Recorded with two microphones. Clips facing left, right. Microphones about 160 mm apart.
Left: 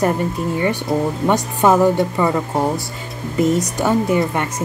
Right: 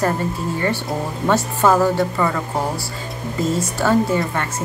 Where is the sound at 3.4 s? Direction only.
20° left (ahead or behind).